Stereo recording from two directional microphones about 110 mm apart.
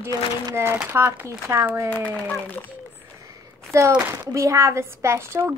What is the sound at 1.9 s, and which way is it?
Speech, 15° left (ahead or behind).